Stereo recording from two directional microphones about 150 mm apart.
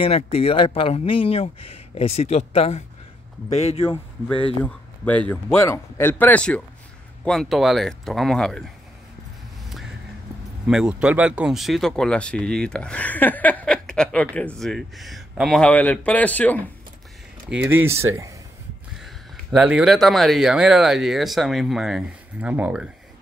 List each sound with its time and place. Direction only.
0.0 s a man's voice: 40° left (ahead or behind)
4.6 s speech: 10° left (ahead or behind)
10.7 s speech: 5° right (ahead or behind)
17.5 s speech: 10° right (ahead or behind)
18.9 s speech: 5° right (ahead or behind)